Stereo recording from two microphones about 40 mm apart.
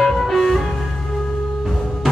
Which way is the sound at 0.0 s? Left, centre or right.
Centre.